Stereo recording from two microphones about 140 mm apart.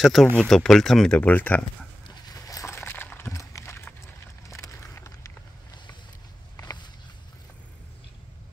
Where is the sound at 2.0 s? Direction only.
25° left (ahead or behind).